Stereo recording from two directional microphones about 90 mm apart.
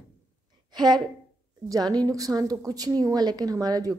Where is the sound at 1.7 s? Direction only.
45° right (ahead or behind).